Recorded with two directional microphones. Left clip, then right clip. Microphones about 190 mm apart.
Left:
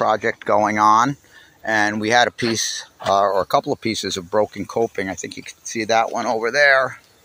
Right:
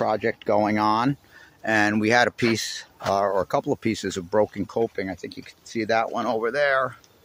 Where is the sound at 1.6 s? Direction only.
25° right (ahead or behind).